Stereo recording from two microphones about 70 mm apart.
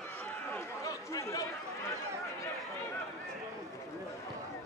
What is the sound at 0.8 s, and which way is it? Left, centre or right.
Chatter, left.